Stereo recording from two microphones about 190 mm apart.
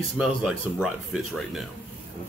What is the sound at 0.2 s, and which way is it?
Speech, centre (ahead or behind).